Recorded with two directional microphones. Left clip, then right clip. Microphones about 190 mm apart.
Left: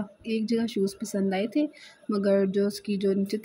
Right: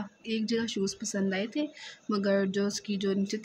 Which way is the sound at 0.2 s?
15° left (ahead or behind).